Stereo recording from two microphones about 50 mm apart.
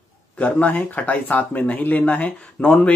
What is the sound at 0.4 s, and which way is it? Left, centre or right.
Speech, left.